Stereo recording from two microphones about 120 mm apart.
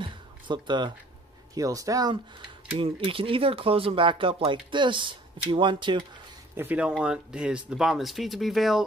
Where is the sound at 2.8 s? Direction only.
50° right (ahead or behind).